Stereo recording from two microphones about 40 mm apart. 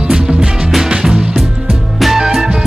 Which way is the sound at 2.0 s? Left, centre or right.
Centre.